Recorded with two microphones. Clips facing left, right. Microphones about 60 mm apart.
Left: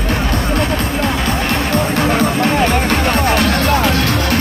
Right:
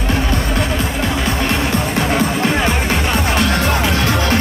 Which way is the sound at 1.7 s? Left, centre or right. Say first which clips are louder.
Left 2 dB; left.